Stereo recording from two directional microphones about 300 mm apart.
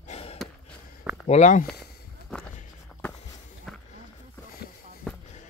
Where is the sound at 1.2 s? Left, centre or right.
Left.